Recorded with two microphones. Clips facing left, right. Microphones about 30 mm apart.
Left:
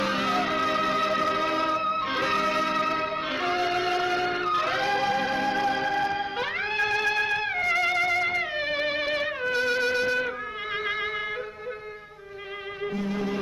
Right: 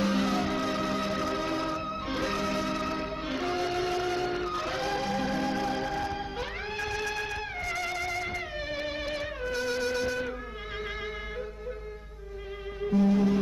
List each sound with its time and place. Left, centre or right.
0.0 s music: left
12.8 s music: left
13.1 s music: centre